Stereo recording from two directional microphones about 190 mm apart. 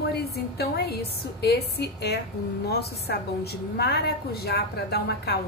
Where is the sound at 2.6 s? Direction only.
55° left (ahead or behind).